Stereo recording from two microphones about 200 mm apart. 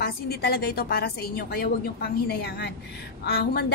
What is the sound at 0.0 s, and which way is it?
A woman's voice, 50° left (ahead or behind).